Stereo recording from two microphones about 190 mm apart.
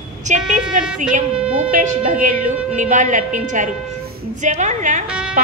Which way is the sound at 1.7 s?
45° right (ahead or behind).